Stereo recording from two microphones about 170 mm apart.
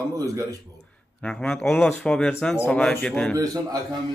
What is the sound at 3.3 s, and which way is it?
Speech, 20° right (ahead or behind).